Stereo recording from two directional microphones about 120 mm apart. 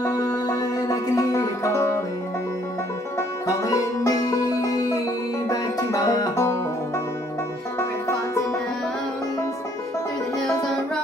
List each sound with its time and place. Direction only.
0.0 s music: 30° left (ahead or behind)
3.2 s music: 25° left (ahead or behind)